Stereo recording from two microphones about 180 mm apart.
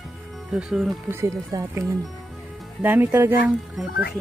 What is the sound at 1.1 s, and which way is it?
Speech, 15° right (ahead or behind).